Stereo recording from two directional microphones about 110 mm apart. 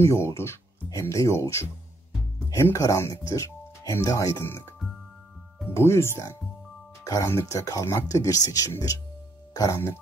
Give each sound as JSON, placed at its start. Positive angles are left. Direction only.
{"t": 0.0, "sound": "speech", "side_deg": 25}
{"t": 5.7, "sound": "speech", "side_deg": 25}